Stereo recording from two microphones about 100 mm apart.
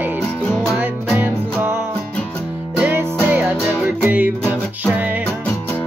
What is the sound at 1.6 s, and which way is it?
Music, 25° right (ahead or behind).